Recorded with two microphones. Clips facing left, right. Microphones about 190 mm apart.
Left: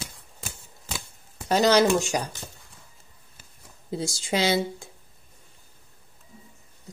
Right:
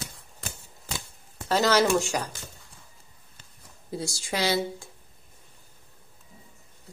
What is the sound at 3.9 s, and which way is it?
Speech, 20° left (ahead or behind).